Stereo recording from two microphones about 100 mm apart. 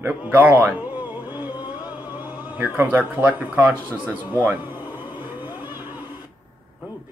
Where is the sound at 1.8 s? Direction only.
20° right (ahead or behind).